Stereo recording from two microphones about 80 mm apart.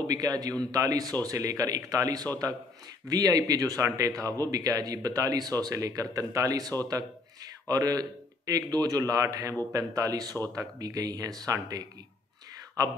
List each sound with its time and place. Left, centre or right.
0.0 s a man's voice: right